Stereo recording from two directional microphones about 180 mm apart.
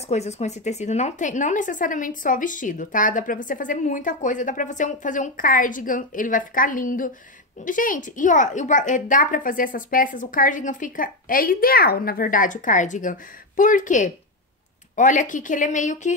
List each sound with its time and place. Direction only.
0.1 s speech: 40° left (ahead or behind)